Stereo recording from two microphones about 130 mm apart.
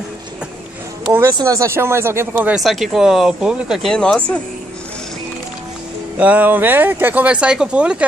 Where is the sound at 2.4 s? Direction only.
5° right (ahead or behind).